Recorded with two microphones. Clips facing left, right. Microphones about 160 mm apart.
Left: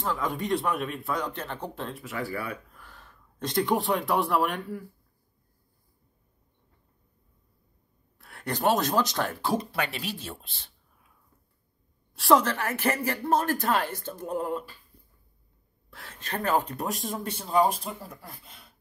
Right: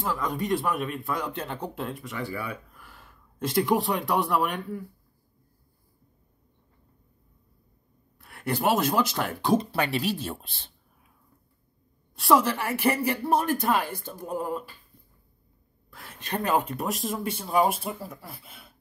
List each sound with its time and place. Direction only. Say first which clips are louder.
0.0 s speech: right 1 dB; centre (ahead or behind)
1.3 s speech: right 2 dB; 15° right (ahead or behind)
2.0 s speech: even; centre (ahead or behind)
2.8 s speech: even; 10° right (ahead or behind)
8.2 s speech: right 1 dB; centre (ahead or behind); by 10.0 s 30° right (ahead or behind)
12.2 s speech: even; 5° right (ahead or behind)
16.0 s speech: right 2 dB; 15° right (ahead or behind)
16.7 s speech: right 2 dB; centre (ahead or behind)